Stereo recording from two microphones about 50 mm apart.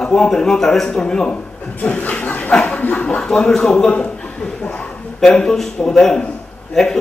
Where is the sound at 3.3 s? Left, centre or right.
Centre.